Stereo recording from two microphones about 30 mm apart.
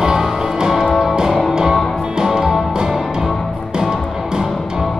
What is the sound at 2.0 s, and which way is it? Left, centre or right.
Music, right.